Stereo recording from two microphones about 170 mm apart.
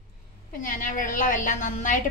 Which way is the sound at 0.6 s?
50° left (ahead or behind).